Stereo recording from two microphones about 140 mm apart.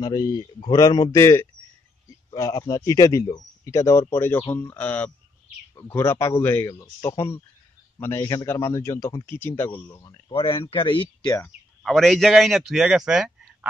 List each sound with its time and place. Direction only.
0.0 s speech: 30° left (ahead or behind)
10.7 s speech: 40° left (ahead or behind)
11.8 s a man's voice: centre (ahead or behind)